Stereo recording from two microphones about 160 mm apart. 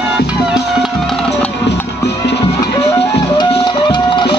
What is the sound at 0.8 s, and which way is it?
Music, 5° left (ahead or behind).